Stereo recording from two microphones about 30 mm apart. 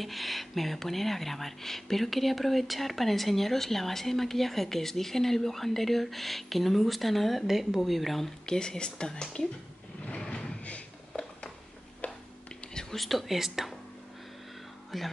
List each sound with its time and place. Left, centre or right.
0.0 s speech: centre
7.4 s speech: centre
8.5 s speech: left
10.2 s a sound: left
11.1 s a sound: left
12.0 s tick-tock: left
12.9 s speech: centre
14.9 s speech: centre